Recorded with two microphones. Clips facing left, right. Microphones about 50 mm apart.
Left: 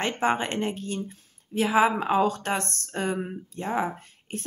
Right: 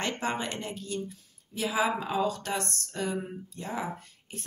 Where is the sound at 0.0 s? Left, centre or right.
Left.